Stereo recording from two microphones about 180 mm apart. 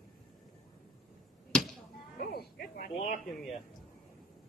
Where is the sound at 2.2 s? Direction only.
60° left (ahead or behind).